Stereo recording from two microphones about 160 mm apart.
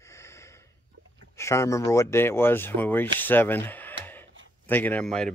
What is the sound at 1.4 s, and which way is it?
Speech, 20° left (ahead or behind).